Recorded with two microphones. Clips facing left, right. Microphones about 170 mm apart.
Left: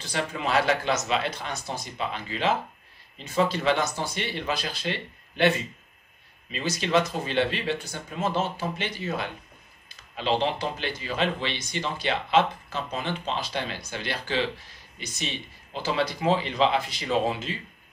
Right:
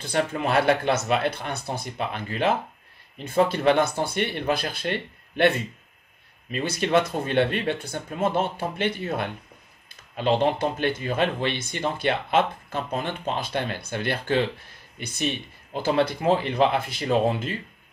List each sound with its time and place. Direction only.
0.0 s speech: 55° right (ahead or behind)
6.5 s speech: 55° right (ahead or behind)